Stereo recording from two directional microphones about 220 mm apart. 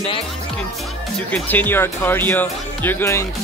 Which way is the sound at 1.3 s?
10° left (ahead or behind).